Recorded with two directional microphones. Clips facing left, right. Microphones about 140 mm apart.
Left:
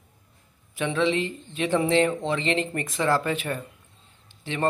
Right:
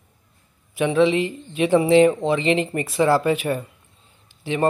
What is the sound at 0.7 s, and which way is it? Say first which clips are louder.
Speech: right 6 dB; 15° right (ahead or behind).